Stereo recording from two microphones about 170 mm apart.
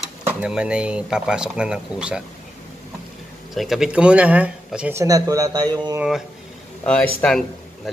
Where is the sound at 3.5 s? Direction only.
Centre (ahead or behind).